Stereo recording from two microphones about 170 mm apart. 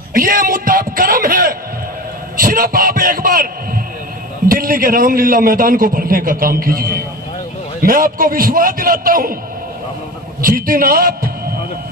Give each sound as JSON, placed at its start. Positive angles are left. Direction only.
{"t": 0.1, "sound": "a man's voice", "side_deg": -55}
{"t": 10.4, "sound": "a man's voice", "side_deg": -55}